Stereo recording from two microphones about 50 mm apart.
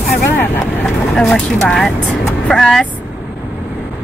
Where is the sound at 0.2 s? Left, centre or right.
Left.